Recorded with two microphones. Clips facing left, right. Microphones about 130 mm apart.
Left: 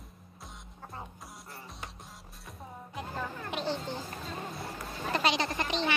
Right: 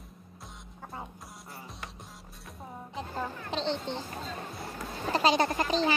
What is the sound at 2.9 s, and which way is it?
Music, 30° right (ahead or behind).